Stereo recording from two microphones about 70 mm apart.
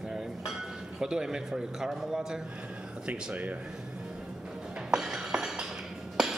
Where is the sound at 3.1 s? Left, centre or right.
Right.